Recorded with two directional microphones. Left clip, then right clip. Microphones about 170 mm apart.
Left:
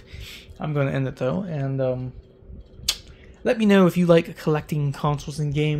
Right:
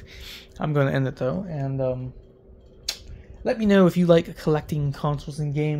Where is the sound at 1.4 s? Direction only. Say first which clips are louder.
Left 2 dB; 30° left (ahead or behind).